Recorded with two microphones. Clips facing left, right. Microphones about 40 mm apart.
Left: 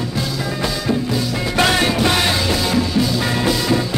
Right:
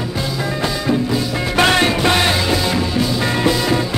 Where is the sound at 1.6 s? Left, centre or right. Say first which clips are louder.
Right 2 dB; right.